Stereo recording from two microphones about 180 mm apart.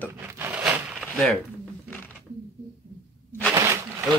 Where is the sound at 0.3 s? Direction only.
10° right (ahead or behind).